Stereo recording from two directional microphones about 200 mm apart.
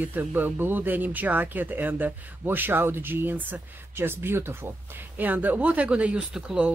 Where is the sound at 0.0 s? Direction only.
10° right (ahead or behind).